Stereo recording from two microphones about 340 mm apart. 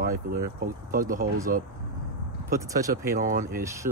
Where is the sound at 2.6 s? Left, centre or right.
Centre.